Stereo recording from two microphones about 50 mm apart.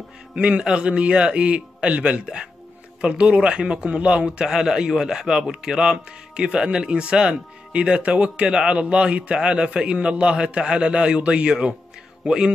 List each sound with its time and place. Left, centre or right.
0.4 s a man's voice: right
12.2 s a man's voice: right